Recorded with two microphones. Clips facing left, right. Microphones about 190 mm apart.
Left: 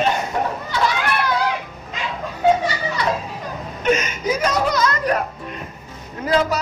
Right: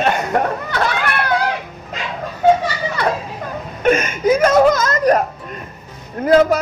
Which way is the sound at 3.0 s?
55° right (ahead or behind).